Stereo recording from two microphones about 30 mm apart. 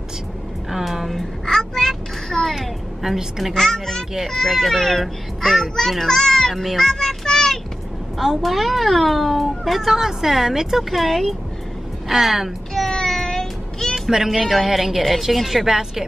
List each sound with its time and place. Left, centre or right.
0.7 s a sound: centre
1.5 s a sound: centre
2.5 s vehicle: centre
3.2 s a woman's voice: centre
3.5 s a child's voice: centre
6.5 s speech: centre
6.8 s child singing: centre
8.2 s speech: centre
9.9 s a woman's voice: centre
10.8 s speech: centre
12.1 s speech: centre
12.9 s child singing: centre
14.2 s a woman's voice: centre